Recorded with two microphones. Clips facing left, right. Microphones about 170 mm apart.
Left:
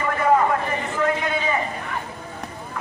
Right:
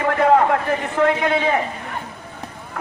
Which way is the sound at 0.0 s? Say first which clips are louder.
Right 4 dB; 70° right (ahead or behind).